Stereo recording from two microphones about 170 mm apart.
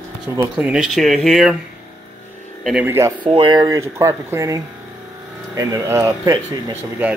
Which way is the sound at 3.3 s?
30° right (ahead or behind).